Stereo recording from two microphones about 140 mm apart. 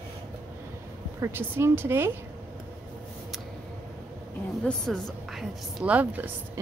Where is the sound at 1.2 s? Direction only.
15° right (ahead or behind).